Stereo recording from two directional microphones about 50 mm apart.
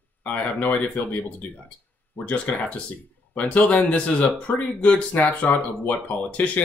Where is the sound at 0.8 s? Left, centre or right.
Left.